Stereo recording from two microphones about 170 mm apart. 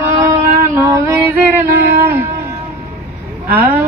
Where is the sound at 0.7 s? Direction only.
15° right (ahead or behind).